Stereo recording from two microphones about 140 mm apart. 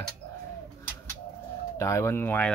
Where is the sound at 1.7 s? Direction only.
20° left (ahead or behind).